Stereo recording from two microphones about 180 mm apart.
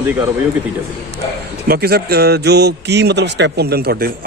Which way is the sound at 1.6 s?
60° right (ahead or behind).